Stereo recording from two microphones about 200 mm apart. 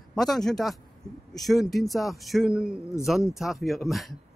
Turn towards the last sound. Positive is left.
turn(degrees=0)  # may be behind; listen again after turning